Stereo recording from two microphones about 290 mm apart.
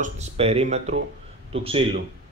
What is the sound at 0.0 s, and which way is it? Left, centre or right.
Speech, right.